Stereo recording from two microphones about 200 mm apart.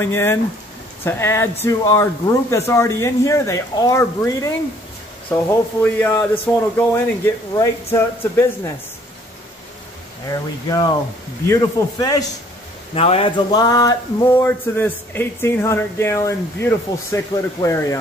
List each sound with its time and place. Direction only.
0.0 s speech: 10° left (ahead or behind)
10.3 s speech: 20° left (ahead or behind)
12.9 s a man's voice: 30° left (ahead or behind)
13.5 s speech: 20° left (ahead or behind)